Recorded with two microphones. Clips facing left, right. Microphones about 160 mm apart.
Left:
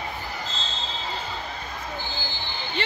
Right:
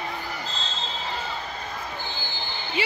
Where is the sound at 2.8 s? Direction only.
10° right (ahead or behind).